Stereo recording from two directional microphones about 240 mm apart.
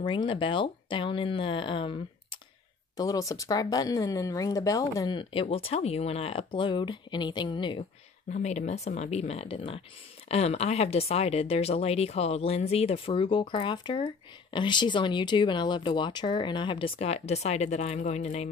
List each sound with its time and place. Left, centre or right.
0.0 s speech: left
3.0 s speech: centre